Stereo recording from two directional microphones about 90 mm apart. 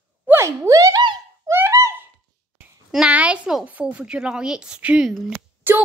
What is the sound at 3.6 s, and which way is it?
Speech, 15° right (ahead or behind).